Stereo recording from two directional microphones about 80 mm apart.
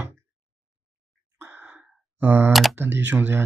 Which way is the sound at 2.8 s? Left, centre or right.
Right.